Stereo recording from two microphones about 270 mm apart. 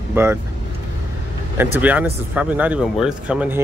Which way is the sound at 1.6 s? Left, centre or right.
Centre.